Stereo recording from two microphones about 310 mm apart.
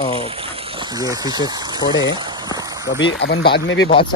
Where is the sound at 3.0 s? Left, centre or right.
Left.